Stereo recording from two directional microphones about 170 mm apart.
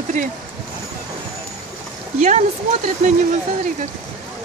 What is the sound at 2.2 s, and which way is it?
Speech, 45° right (ahead or behind).